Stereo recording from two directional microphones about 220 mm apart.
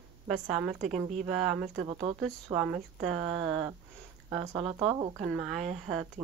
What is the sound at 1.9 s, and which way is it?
Speech, 25° right (ahead or behind).